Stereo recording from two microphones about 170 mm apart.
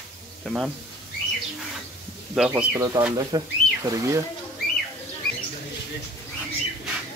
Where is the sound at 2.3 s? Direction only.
5° right (ahead or behind).